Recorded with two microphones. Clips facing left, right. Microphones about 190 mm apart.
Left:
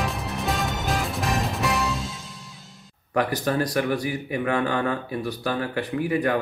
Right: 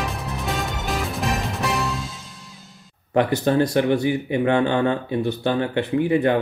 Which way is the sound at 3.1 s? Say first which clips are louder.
Right 5 dB; 25° right (ahead or behind).